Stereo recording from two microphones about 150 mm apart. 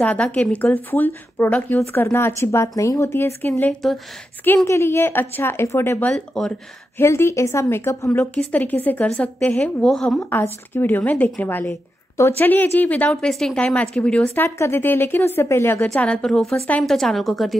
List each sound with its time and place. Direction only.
0.0 s a woman's voice: 10° left (ahead or behind)
7.0 s a woman's voice: 15° left (ahead or behind)
10.3 s a woman's voice: 15° left (ahead or behind)